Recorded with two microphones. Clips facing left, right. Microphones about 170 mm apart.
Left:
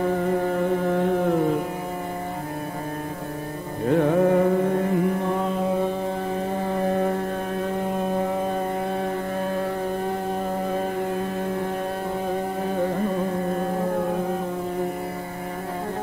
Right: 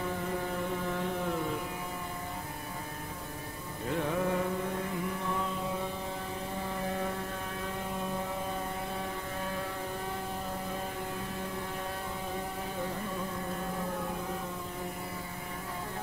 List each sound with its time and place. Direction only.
0.0 s carnatic music: 60° left (ahead or behind)
3.8 s carnatic music: 60° left (ahead or behind)
6.7 s a sound: 55° left (ahead or behind)
8.0 s mains hum: 60° left (ahead or behind)
12.7 s carnatic music: 60° left (ahead or behind)